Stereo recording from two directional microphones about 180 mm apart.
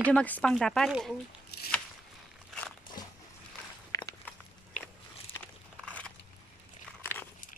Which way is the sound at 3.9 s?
20° left (ahead or behind).